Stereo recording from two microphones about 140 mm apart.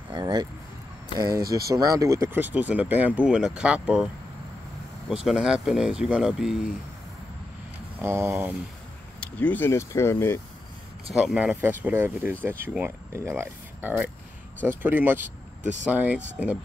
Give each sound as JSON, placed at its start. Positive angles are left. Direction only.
{"t": 0.1, "sound": "speech", "side_deg": -30}
{"t": 5.1, "sound": "speech", "side_deg": -5}
{"t": 8.0, "sound": "speech", "side_deg": -20}
{"t": 9.2, "sound": "speech", "side_deg": 10}
{"t": 11.1, "sound": "speech", "side_deg": -5}